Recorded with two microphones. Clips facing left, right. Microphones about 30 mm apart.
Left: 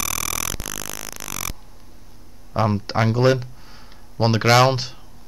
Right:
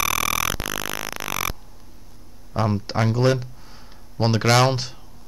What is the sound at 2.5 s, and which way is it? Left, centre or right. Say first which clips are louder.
Speech: left 2 dB; centre.